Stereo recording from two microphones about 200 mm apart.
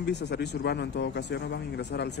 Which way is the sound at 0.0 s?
55° left (ahead or behind).